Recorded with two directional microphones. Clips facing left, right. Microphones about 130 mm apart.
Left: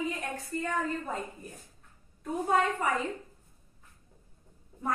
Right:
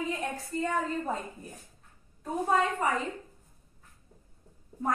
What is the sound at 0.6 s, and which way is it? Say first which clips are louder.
Speech: right 3 dB; 35° right (ahead or behind).